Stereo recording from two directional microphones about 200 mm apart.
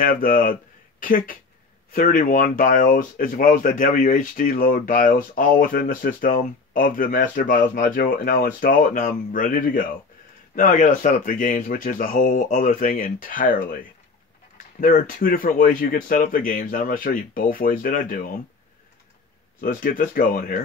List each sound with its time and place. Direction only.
0.0 s speech: 45° left (ahead or behind)
14.8 s speech: 40° left (ahead or behind)
19.6 s speech: 45° left (ahead or behind)